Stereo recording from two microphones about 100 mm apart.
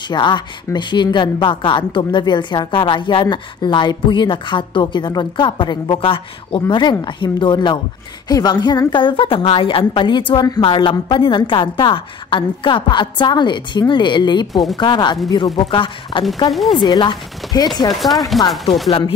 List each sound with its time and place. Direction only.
0.1 s a woman's voice: 50° left (ahead or behind)
14.5 s speech: centre (ahead or behind)
14.8 s a woman's voice: 50° left (ahead or behind)
15.7 s a woman's voice: 55° left (ahead or behind)
16.5 s speech: centre (ahead or behind)
16.8 s a woman's voice: 50° left (ahead or behind)
17.9 s speech: centre (ahead or behind)